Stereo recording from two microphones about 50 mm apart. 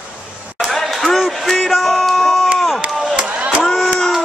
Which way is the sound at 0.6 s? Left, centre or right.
Centre.